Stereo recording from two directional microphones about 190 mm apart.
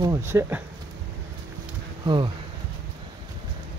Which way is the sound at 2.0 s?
25° right (ahead or behind).